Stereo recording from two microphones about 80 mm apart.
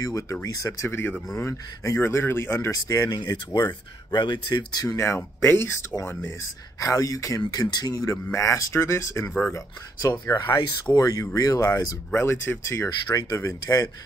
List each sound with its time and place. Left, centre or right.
0.0 s speech: left
0.8 s speech: left
2.7 s speech: left
3.2 s speech: left
4.8 s speech: left
6.8 s speech: left
8.1 s speech: left
12.1 s speech: left
13.0 s speech: left